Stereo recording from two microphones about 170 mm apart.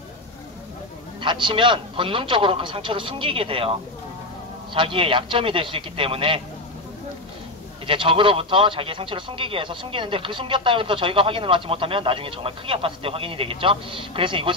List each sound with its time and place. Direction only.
1.2 s speech: 30° right (ahead or behind)
4.7 s speech: 30° right (ahead or behind)
7.8 s speech: 30° right (ahead or behind)